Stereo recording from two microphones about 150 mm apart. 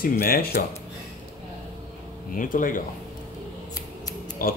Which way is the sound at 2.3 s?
65° left (ahead or behind).